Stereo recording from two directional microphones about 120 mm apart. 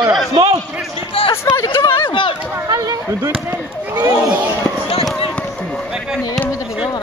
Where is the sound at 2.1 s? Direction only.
45° left (ahead or behind).